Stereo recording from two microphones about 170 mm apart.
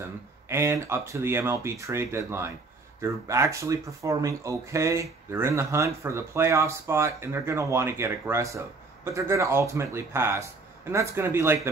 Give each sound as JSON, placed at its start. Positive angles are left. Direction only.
{"t": 0.0, "sound": "speech", "side_deg": -15}